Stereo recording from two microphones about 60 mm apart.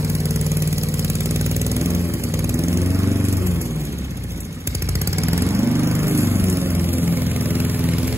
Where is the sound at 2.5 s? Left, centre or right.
Right.